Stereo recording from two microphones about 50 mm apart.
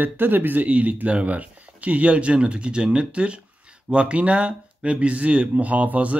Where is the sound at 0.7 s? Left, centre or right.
Right.